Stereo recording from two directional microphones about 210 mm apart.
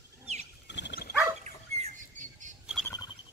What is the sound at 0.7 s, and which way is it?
Dog, 55° left (ahead or behind).